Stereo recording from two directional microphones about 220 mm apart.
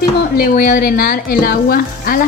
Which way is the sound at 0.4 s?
40° left (ahead or behind).